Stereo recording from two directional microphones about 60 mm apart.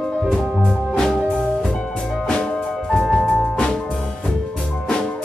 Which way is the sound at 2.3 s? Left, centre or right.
Centre.